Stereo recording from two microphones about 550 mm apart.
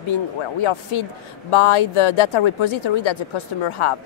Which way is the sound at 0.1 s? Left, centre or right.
Left.